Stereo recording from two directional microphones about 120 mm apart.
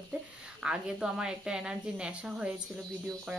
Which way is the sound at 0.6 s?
5° right (ahead or behind).